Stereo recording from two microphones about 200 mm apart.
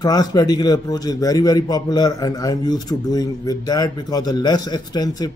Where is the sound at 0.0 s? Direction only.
20° left (ahead or behind).